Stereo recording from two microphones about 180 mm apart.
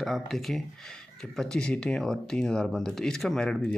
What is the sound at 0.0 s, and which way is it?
Speech, centre (ahead or behind).